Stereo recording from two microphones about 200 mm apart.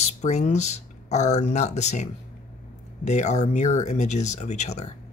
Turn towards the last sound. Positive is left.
turn(degrees=35)  # may be behind; listen again after turning